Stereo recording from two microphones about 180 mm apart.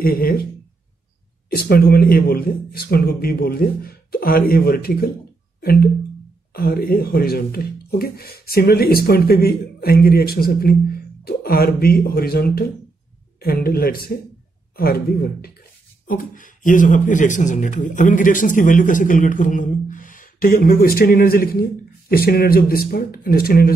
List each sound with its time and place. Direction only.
0.0 s speech: 55° left (ahead or behind)
1.6 s speech: 55° left (ahead or behind)
5.6 s a sound: 55° left (ahead or behind)
6.5 s speech: 55° left (ahead or behind)